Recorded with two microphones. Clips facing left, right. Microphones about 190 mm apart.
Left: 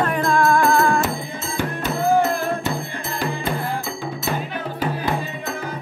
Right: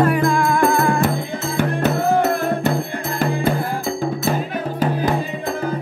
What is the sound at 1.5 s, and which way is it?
Music, 65° right (ahead or behind).